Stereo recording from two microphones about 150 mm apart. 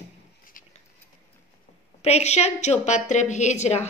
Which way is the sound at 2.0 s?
45° left (ahead or behind).